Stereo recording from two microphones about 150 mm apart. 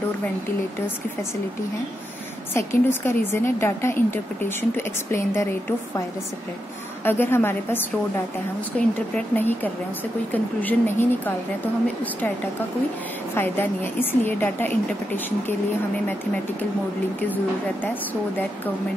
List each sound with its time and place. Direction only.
2.5 s a woman's voice: 15° left (ahead or behind)
7.1 s a woman's voice: 15° left (ahead or behind)